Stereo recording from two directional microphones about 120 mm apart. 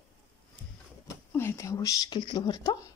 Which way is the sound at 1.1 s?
20° left (ahead or behind).